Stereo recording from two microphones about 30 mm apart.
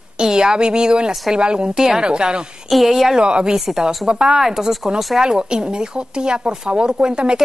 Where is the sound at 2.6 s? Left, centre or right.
Centre.